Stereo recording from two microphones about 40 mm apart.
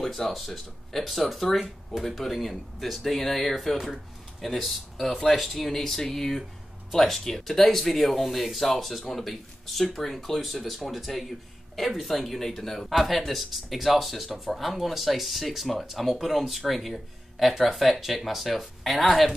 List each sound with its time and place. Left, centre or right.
0.0 s speech: centre